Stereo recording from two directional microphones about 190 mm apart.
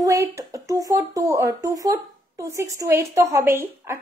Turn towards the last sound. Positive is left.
turn(degrees=-15)  # may be behind; listen again after turning